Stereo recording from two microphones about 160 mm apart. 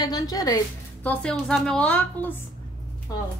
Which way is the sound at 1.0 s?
10° left (ahead or behind).